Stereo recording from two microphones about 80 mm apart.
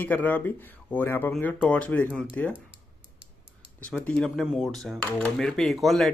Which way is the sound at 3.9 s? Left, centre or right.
Centre.